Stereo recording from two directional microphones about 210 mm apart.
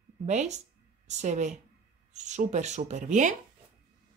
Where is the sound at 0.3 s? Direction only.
30° right (ahead or behind).